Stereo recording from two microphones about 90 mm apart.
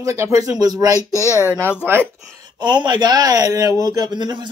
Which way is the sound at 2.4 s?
55° right (ahead or behind).